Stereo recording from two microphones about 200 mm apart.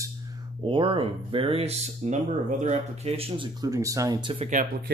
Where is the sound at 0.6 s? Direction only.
25° right (ahead or behind).